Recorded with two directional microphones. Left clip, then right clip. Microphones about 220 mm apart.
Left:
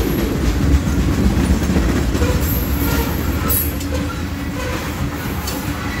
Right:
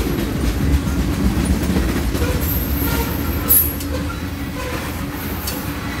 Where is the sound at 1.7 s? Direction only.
50° right (ahead or behind).